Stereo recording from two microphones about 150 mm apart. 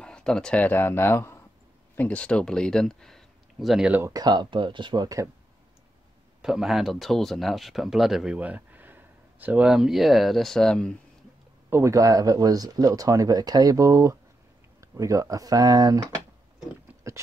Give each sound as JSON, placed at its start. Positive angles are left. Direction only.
{"t": 0.0, "sound": "speech", "side_deg": 5}
{"t": 4.1, "sound": "speech", "side_deg": -25}
{"t": 6.4, "sound": "speech", "side_deg": 0}
{"t": 11.7, "sound": "speech", "side_deg": -20}
{"t": 17.1, "sound": "a sound", "side_deg": -20}